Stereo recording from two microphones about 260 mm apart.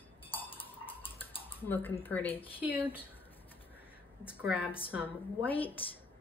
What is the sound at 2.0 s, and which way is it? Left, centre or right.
Speech, centre.